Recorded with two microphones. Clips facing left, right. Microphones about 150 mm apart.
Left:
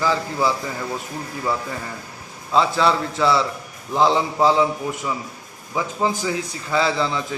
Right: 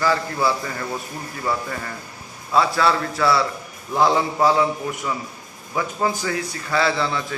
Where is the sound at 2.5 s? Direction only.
20° left (ahead or behind).